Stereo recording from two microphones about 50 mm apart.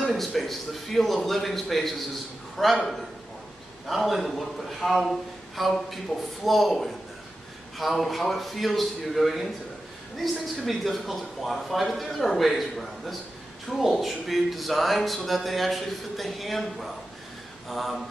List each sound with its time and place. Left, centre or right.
0.1 s a man's voice: centre
3.8 s speech: centre